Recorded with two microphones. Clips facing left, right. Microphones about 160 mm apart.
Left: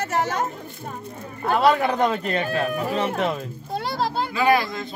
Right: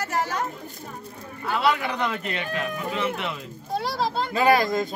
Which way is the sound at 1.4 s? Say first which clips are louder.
Left 5 dB; 45° left (ahead or behind).